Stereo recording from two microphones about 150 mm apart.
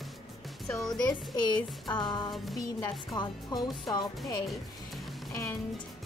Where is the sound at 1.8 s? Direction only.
30° left (ahead or behind).